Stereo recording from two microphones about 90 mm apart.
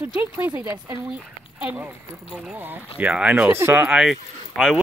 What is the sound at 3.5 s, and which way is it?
Speech, 30° right (ahead or behind).